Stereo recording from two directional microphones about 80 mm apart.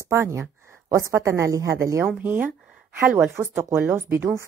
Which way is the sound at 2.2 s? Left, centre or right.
Right.